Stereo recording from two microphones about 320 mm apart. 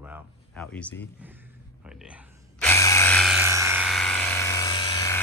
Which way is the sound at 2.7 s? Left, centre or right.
Centre.